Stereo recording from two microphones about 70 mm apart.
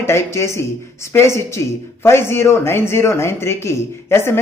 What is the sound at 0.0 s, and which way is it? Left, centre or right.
Speech, left.